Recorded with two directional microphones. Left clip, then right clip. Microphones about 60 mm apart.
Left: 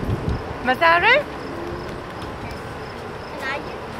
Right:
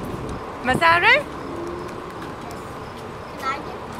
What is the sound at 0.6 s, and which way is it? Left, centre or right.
Speech, centre.